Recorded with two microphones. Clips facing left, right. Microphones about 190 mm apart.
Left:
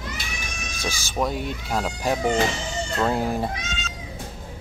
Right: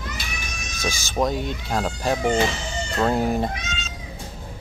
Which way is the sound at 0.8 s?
15° right (ahead or behind).